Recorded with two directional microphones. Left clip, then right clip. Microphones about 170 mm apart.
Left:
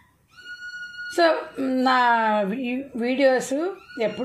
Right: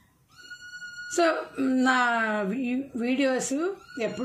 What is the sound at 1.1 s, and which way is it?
Speech, 20° right (ahead or behind).